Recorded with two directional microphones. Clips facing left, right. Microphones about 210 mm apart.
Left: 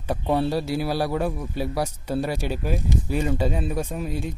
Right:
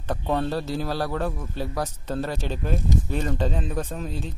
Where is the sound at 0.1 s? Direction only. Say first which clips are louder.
Left 3 dB; 10° left (ahead or behind).